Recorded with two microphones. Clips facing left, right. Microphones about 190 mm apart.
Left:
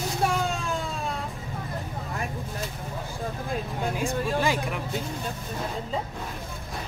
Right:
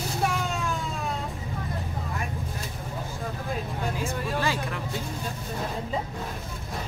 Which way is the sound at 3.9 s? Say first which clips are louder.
Left 5 dB; 15° left (ahead or behind).